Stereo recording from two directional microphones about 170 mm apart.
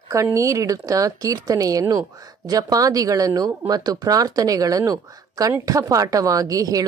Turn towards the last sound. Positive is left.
turn(degrees=-20)  # may be behind; listen again after turning